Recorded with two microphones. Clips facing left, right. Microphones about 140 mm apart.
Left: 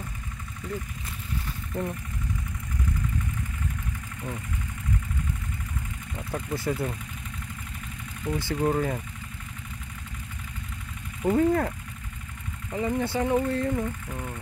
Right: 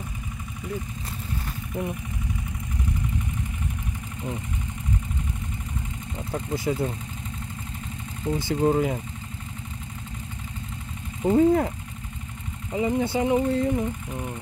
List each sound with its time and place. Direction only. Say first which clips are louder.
1.7 s speech: right 1 dB; 20° right (ahead or behind)
6.3 s speech: right 2 dB; 20° right (ahead or behind)
8.2 s speech: right 3 dB; 20° right (ahead or behind)
11.2 s speech: right 3 dB; 15° right (ahead or behind)
12.7 s speech: right 3 dB; 20° right (ahead or behind)